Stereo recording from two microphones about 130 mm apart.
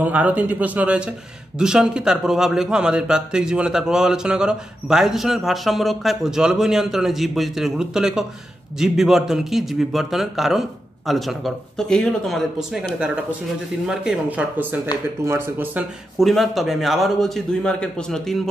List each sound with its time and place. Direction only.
0.0 s a man's voice: 15° right (ahead or behind)
16.2 s a man's voice: centre (ahead or behind)